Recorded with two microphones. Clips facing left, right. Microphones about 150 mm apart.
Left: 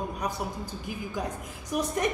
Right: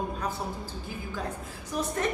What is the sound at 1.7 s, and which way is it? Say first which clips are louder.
Speech: left 2 dB; 15° left (ahead or behind).